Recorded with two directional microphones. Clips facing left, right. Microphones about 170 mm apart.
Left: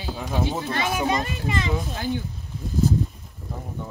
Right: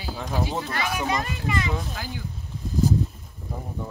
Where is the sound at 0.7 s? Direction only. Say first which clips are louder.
Left 3 dB; 25° left (ahead or behind).